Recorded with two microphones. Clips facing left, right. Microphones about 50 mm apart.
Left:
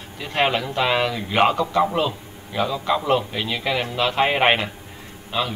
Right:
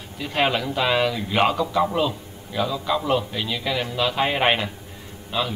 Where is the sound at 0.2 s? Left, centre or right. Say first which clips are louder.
Left 1 dB; centre.